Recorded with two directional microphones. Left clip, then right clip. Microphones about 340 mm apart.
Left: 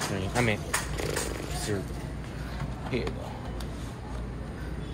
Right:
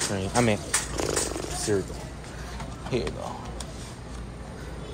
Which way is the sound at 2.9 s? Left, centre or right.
Centre.